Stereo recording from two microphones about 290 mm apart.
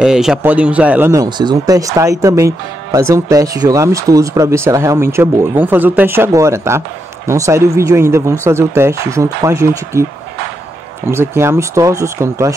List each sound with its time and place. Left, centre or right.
0.0 s speech: centre
11.1 s speech: centre